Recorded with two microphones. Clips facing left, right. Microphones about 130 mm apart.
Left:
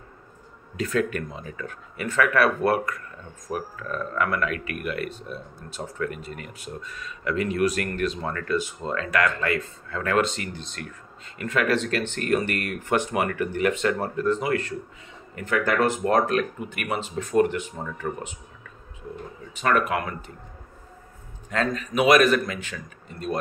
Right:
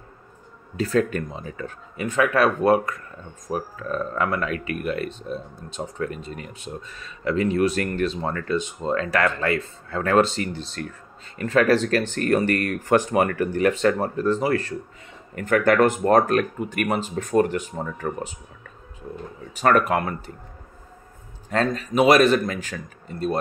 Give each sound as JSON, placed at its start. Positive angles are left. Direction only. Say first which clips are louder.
{"t": 0.7, "sound": "speech", "louder": "right 3 dB", "side_deg": -35}
{"t": 2.0, "sound": "speech", "louder": "right 2 dB", "side_deg": -20}
{"t": 15.3, "sound": "speech", "louder": "right 5 dB", "side_deg": -55}
{"t": 19.5, "sound": "speech", "louder": "right 4 dB", "side_deg": -40}
{"t": 21.5, "sound": "speech", "louder": "right 3 dB", "side_deg": -35}
{"t": 22.5, "sound": "speech", "louder": "right 3 dB", "side_deg": -40}